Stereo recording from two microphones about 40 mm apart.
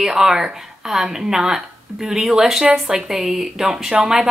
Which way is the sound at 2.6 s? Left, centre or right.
Right.